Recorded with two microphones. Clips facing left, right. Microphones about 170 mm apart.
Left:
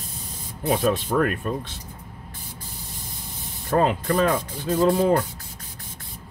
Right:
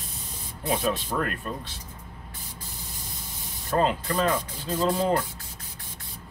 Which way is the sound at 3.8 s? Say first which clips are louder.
Left 3 dB; 50° left (ahead or behind).